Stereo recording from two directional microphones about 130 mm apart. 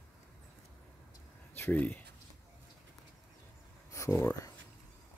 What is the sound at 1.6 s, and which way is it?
Speech, 15° left (ahead or behind).